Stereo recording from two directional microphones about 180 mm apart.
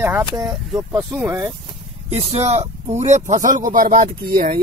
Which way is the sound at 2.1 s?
35° right (ahead or behind).